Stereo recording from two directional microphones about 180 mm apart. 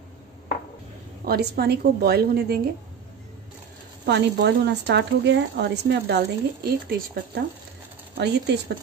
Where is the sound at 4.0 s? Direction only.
65° right (ahead or behind).